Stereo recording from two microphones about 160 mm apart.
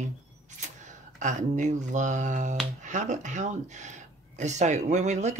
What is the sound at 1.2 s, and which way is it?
Speech, 50° right (ahead or behind).